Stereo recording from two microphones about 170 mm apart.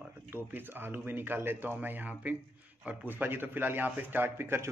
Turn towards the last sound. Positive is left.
turn(degrees=-15)  # may be behind; listen again after turning